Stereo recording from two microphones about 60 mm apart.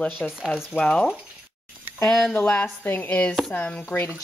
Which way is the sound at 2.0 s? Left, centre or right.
Centre.